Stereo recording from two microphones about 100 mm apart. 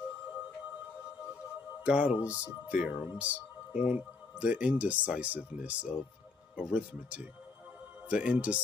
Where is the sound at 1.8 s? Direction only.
10° right (ahead or behind).